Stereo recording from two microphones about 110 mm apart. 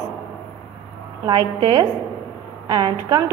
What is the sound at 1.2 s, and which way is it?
A woman's voice, 45° right (ahead or behind).